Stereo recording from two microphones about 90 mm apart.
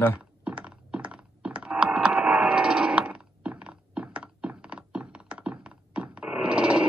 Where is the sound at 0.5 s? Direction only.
10° right (ahead or behind).